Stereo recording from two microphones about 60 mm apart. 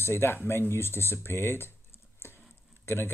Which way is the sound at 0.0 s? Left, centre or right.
Left.